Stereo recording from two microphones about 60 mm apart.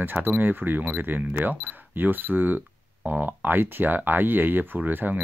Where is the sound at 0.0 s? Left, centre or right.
Right.